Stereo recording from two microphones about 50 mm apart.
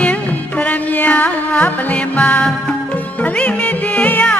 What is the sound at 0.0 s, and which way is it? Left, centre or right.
Music, left.